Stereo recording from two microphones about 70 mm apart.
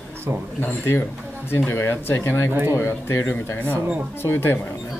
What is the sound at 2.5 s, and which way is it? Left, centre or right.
Speech, right.